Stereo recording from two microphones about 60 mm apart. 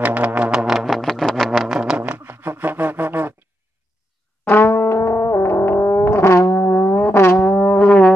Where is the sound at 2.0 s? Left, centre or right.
Right.